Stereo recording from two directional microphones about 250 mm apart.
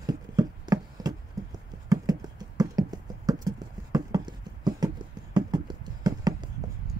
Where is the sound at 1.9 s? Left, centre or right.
Centre.